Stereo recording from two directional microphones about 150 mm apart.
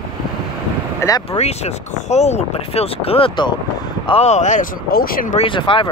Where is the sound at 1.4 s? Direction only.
45° left (ahead or behind).